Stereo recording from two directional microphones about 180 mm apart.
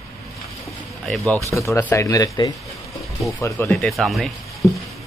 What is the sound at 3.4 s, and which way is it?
Speech, 15° left (ahead or behind).